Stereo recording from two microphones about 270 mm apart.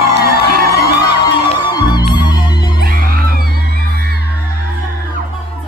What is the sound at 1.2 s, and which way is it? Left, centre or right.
Music, centre.